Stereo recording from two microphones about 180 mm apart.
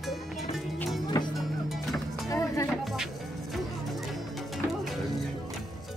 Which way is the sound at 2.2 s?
15° left (ahead or behind).